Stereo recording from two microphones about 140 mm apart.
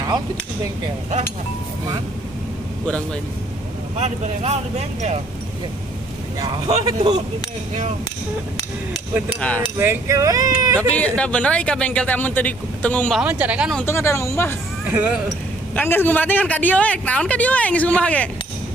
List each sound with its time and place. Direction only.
4.0 s speech: 50° right (ahead or behind)
6.4 s speech: 25° right (ahead or behind)
9.4 s speech: 10° left (ahead or behind)
9.8 s speech: 20° right (ahead or behind)
10.9 s speech: 10° left (ahead or behind)
13.2 s speech: 10° right (ahead or behind)
13.8 s speech: 20° left (ahead or behind)
14.9 s speech: 15° right (ahead or behind)
15.7 s speech: 15° left (ahead or behind)